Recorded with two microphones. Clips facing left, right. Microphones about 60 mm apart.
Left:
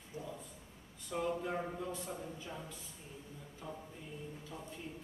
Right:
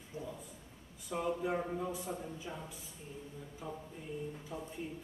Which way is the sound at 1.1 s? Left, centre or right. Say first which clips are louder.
Right 2 dB; centre.